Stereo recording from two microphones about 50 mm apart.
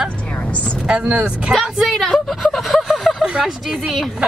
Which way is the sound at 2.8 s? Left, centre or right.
Centre.